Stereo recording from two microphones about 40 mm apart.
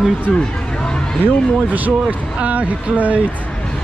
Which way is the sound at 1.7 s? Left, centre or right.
Right.